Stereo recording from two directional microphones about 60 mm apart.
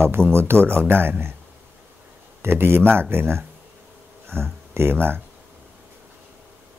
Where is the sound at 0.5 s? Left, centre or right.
Right.